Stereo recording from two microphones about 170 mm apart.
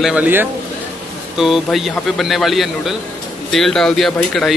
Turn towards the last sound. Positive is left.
turn(degrees=0)  # may be behind; listen again after turning